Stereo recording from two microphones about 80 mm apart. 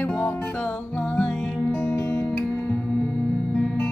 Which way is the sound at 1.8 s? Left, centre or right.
Left.